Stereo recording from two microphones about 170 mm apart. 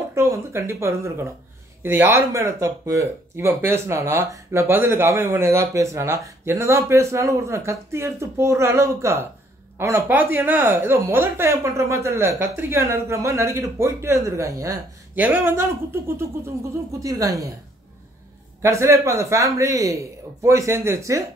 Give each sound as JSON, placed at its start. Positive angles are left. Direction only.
{"t": 0.1, "sound": "a woman's voice", "side_deg": -15}
{"t": 18.6, "sound": "speech", "side_deg": -15}